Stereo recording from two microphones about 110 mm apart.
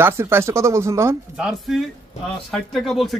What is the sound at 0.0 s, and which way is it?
Speech, 20° right (ahead or behind).